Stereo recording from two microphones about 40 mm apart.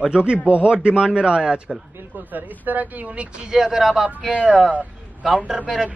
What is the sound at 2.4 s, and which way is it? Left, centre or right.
Speech, right.